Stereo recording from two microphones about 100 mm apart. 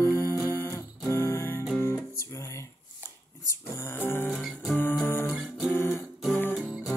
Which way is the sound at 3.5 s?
25° left (ahead or behind).